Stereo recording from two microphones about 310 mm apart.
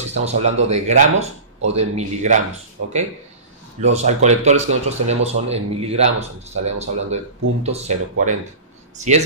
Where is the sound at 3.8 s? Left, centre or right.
Right.